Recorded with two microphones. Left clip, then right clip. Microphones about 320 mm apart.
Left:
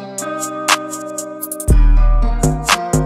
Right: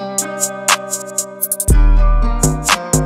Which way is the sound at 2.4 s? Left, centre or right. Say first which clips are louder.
Left 1 dB; centre.